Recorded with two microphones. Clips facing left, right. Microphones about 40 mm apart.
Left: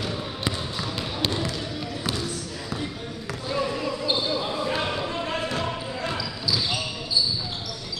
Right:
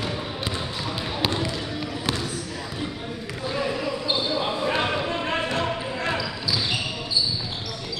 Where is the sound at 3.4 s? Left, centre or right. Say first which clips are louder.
Even; centre.